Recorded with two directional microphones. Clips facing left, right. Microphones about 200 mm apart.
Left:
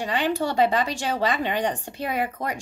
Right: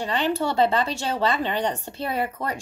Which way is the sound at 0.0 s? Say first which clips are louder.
Even; 10° left (ahead or behind).